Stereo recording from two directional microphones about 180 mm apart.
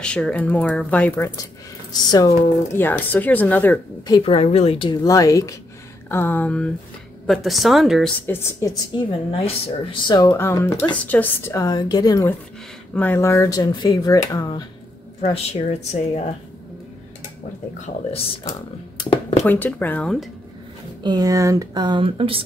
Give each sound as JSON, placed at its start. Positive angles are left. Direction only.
{"t": 0.0, "sound": "speech", "side_deg": 5}
{"t": 4.1, "sound": "a woman's voice", "side_deg": 30}
{"t": 8.3, "sound": "a woman's voice", "side_deg": 15}
{"t": 10.3, "sound": "a woman's voice", "side_deg": 15}
{"t": 17.8, "sound": "speech", "side_deg": 35}
{"t": 18.4, "sound": "speech", "side_deg": 20}
{"t": 19.5, "sound": "speech", "side_deg": 10}
{"t": 21.0, "sound": "speech", "side_deg": -20}